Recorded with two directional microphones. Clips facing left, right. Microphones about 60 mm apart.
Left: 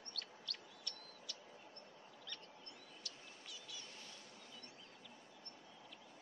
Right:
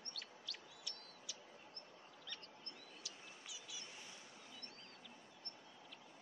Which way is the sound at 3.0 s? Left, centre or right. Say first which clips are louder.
Even; centre.